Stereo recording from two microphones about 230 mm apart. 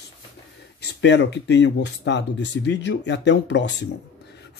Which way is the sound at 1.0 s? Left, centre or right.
Left.